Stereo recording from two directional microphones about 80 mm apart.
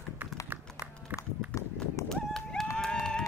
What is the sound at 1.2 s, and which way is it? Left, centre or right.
Run, left.